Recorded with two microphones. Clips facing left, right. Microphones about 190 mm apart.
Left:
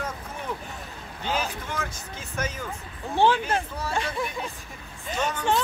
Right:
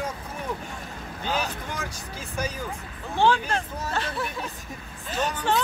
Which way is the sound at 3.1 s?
20° left (ahead or behind).